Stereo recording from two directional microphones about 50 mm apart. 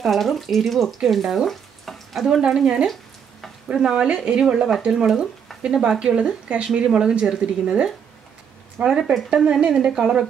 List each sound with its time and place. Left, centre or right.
0.0 s speech: centre
2.4 s speech: centre
8.8 s speech: right
9.3 s speech: centre